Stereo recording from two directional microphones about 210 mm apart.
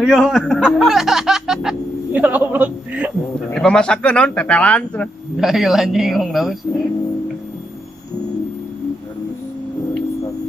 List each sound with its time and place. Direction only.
0.0 s speech: centre (ahead or behind)
3.5 s speech: 5° left (ahead or behind)